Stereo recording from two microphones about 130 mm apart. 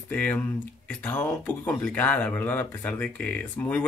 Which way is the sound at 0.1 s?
10° left (ahead or behind).